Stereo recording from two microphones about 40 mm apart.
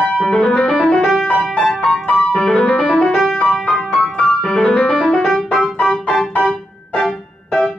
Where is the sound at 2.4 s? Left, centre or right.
Centre.